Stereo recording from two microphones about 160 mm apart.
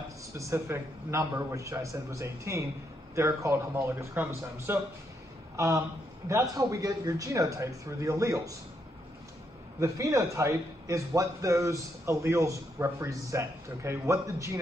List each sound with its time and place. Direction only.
0.3 s a man's voice: 15° right (ahead or behind)
6.5 s speech: 25° right (ahead or behind)
9.8 s speech: 20° right (ahead or behind)